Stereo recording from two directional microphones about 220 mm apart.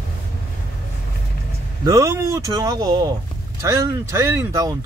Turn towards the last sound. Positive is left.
turn(degrees=-15)  # may be behind; listen again after turning